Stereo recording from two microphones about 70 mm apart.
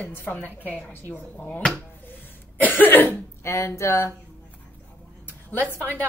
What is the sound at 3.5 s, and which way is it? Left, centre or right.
Speech, left.